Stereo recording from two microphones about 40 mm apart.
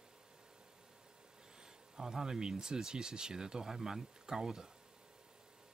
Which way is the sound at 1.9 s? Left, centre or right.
Centre.